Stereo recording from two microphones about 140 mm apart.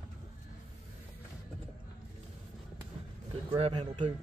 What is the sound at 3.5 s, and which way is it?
Speech, 50° right (ahead or behind).